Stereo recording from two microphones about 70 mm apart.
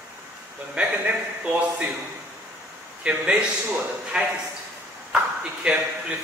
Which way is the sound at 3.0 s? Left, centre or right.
Centre.